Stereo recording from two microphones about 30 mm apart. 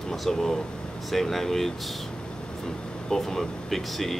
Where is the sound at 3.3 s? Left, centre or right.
Centre.